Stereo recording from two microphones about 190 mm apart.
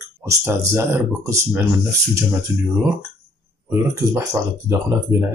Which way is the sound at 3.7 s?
15° right (ahead or behind).